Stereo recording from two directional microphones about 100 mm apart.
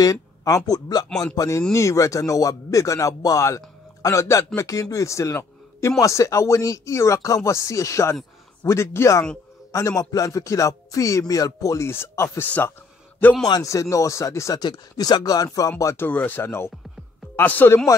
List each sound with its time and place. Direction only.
0.0 s speech: 35° left (ahead or behind)
1.0 s a man's voice: 5° left (ahead or behind)
1.3 s a man's voice: 35° left (ahead or behind); by 12.7 s 15° left (ahead or behind)
13.5 s speech: 35° left (ahead or behind)
14.6 s speech: 45° left (ahead or behind)
16.1 s speech: 15° left (ahead or behind)